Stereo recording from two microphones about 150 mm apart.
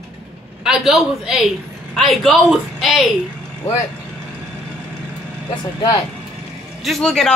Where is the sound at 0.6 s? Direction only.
5° right (ahead or behind).